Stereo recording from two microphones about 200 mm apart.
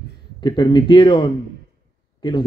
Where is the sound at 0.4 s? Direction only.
25° left (ahead or behind).